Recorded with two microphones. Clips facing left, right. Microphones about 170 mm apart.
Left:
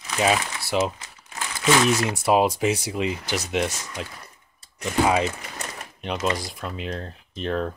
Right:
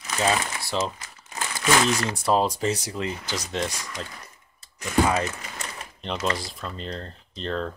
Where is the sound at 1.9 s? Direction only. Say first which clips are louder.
Left 3 dB; 10° left (ahead or behind).